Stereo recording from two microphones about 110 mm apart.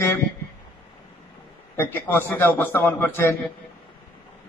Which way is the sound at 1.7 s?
20° left (ahead or behind).